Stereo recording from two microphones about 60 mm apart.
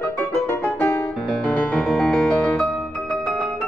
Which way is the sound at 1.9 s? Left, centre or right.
Centre.